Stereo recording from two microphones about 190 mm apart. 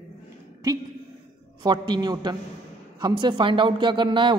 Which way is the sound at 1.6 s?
20° right (ahead or behind).